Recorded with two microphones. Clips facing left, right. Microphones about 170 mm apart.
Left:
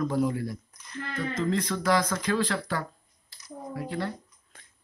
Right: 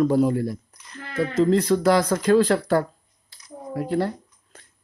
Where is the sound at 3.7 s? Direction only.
45° right (ahead or behind).